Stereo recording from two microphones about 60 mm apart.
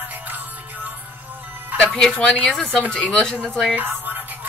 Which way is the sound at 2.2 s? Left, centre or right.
Centre.